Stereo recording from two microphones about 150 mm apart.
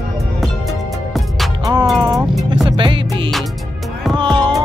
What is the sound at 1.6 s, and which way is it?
Music, 25° right (ahead or behind).